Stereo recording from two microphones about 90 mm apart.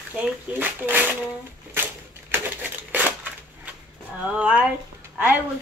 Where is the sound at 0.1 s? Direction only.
15° right (ahead or behind).